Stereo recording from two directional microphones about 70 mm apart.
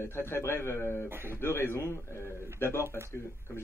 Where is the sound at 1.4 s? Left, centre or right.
Left.